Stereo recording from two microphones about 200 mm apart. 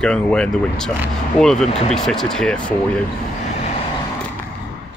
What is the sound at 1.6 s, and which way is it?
Speech, 30° left (ahead or behind).